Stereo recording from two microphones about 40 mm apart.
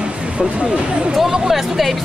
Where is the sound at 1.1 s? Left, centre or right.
Centre.